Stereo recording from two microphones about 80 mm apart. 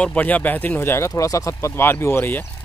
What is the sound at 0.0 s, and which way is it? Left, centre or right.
Speech, centre.